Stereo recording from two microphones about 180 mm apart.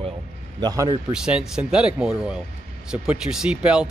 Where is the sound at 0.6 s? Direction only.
20° right (ahead or behind).